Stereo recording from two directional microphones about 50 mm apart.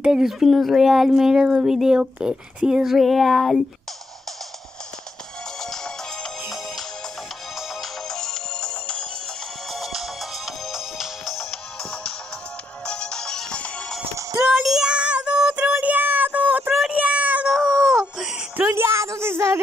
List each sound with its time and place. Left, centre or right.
0.0 s speech: centre
5.6 s music: centre
7.5 s music: centre
8.2 s music: centre
9.7 s music: centre
11.5 s music: centre
14.6 s child singing: centre
14.9 s music: right
15.8 s a sound: right
17.5 s a sound: centre
18.7 s a sound: right